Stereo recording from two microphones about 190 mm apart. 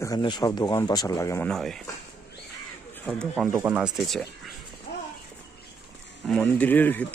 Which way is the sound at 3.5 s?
10° right (ahead or behind).